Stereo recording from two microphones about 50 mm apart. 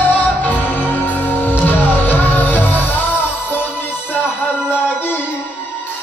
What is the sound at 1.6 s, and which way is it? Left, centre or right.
Music, left.